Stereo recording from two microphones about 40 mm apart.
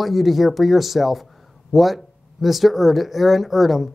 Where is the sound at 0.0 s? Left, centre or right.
Centre.